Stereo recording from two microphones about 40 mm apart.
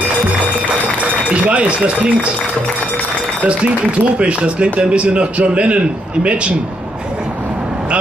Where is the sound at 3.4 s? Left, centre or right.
Right.